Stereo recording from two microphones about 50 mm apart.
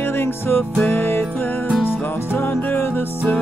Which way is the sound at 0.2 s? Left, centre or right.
Left.